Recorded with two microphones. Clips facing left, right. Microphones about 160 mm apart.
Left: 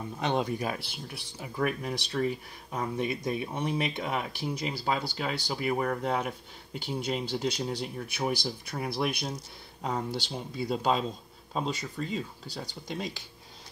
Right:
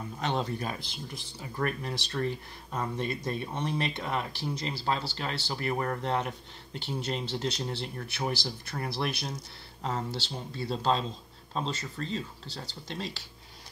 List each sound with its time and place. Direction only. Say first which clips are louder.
0.2 s speech: left 3 dB; 15° left (ahead or behind)